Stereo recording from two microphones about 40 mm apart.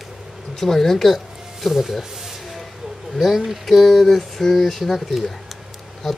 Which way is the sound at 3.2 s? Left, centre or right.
Centre.